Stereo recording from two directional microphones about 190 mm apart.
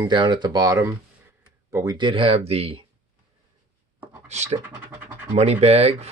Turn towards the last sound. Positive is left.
turn(degrees=-35)  # may be behind; listen again after turning